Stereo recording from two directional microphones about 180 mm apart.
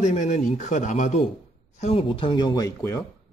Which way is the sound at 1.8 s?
30° left (ahead or behind).